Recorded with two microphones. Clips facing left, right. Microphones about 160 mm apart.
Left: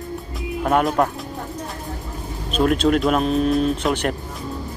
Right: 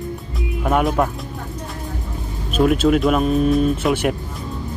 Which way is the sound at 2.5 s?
5° right (ahead or behind).